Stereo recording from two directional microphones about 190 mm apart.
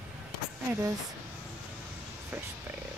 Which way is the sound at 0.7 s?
15° right (ahead or behind).